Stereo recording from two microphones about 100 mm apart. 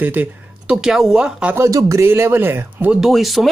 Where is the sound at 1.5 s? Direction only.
30° right (ahead or behind).